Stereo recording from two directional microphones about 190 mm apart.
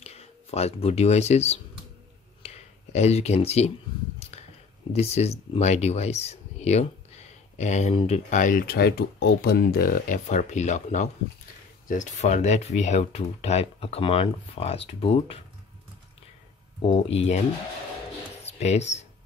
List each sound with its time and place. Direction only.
0.0 s speech: 35° left (ahead or behind)
2.4 s a sound: 35° left (ahead or behind)
4.9 s speech: 35° left (ahead or behind)
16.8 s speech: 30° left (ahead or behind)
18.4 s speech: 35° left (ahead or behind)